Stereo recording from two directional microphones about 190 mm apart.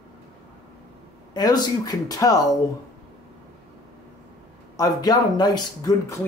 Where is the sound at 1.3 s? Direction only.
20° left (ahead or behind).